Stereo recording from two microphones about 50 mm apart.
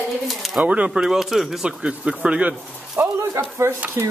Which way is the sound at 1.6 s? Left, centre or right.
Centre.